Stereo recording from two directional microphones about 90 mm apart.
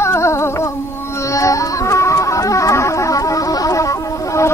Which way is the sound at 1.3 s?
35° left (ahead or behind).